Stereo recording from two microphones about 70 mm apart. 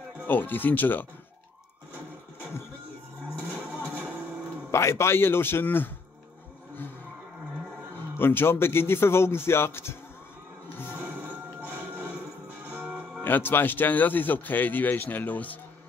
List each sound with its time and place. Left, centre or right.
0.3 s speech: left
3.3 s vehicle: centre
3.7 s music: left
4.6 s a man's voice: left
8.2 s a man's voice: left
11.0 s music: right
13.2 s speech: left